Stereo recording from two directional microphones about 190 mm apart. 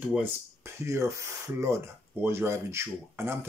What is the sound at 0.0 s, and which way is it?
Speech, 10° right (ahead or behind).